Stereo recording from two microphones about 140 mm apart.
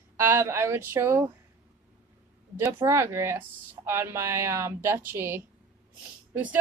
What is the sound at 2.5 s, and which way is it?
Speech, 20° right (ahead or behind).